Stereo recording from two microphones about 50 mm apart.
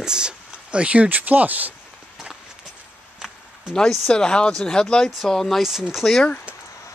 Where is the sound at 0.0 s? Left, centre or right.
Centre; by 1.7 s right.